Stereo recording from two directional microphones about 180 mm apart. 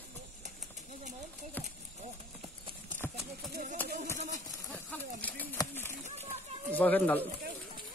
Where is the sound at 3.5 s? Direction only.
45° right (ahead or behind).